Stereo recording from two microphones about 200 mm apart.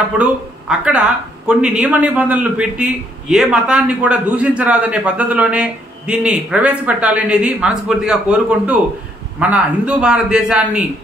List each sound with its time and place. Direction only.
0.2 s a man's voice: 5° right (ahead or behind)